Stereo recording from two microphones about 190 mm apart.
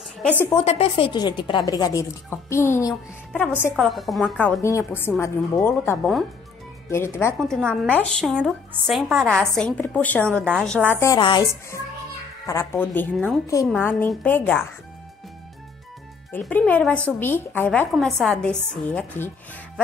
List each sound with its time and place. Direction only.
0.5 s a woman's voice: 30° left (ahead or behind)
3.7 s a woman's voice: centre (ahead or behind)
7.3 s a woman's voice: centre (ahead or behind)
11.0 s speech: 20° left (ahead or behind)
16.3 s a woman's voice: 10° left (ahead or behind)